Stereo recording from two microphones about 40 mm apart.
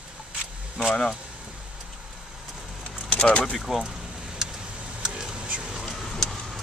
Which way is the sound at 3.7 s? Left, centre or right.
Centre.